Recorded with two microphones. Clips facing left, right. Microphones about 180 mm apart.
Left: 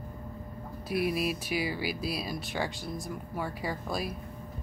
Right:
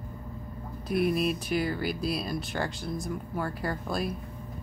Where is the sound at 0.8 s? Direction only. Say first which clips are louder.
Right 3 dB; 5° left (ahead or behind).